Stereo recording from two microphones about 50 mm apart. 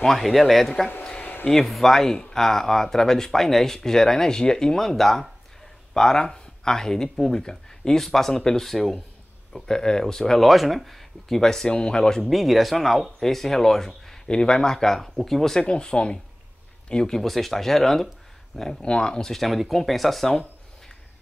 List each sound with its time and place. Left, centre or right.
0.0 s speech: centre
1.2 s a sound: left
1.5 s speech: centre
10.5 s speech: centre
12.2 s speech: centre
18.8 s speech: centre